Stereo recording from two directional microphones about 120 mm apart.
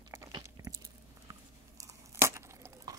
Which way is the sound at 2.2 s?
25° right (ahead or behind).